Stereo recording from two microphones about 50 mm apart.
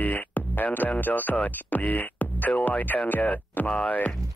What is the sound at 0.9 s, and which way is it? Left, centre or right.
Speech, left.